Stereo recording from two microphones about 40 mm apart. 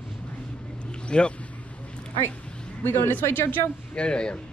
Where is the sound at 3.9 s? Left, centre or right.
Left.